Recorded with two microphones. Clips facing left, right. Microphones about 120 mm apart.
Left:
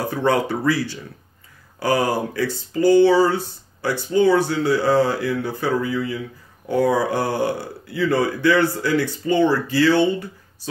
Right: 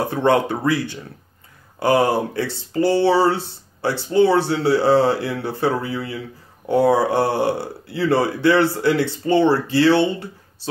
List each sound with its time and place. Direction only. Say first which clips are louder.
0.0 s speech: right 2 dB; 25° right (ahead or behind)